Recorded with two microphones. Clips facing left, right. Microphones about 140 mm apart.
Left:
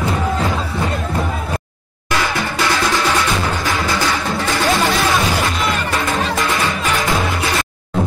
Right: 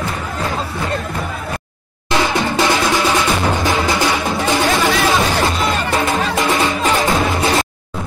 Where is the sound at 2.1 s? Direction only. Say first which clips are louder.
Right 3 dB; 20° right (ahead or behind).